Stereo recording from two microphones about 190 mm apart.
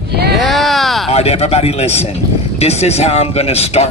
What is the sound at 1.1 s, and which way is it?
Speech, 35° left (ahead or behind).